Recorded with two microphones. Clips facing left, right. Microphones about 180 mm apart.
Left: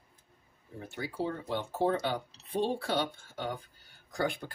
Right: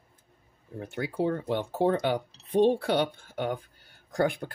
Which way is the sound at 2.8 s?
60° right (ahead or behind).